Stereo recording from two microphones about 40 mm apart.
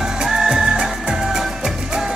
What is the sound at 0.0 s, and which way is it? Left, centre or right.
Music, centre.